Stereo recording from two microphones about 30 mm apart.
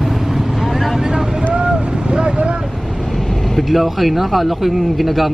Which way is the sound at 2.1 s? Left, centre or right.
Right.